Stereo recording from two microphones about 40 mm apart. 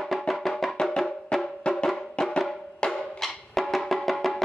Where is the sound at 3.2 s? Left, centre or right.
Centre.